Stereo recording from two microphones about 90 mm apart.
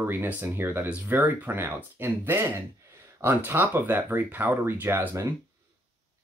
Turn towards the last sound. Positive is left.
turn(degrees=-25)  # may be behind; listen again after turning